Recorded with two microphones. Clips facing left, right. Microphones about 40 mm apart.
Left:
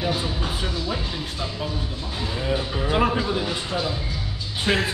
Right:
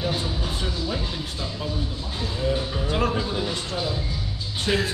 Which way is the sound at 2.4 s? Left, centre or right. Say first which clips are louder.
Even; left.